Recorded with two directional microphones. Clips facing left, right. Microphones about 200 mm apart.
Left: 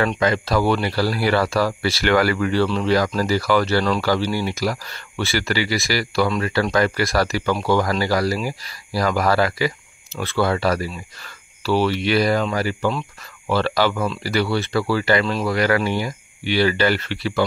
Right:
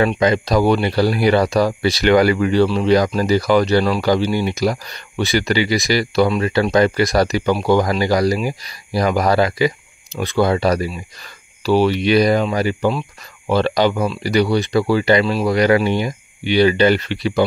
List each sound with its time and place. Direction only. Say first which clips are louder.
0.0 s speech: right 4 dB; 20° right (ahead or behind)